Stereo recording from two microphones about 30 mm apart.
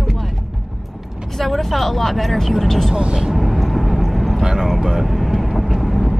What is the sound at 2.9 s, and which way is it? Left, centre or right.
Speech, right.